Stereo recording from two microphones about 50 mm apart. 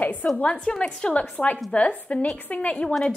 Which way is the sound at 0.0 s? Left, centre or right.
Left.